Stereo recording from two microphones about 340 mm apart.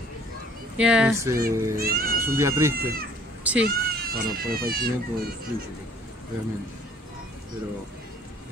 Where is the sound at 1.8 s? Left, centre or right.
Right.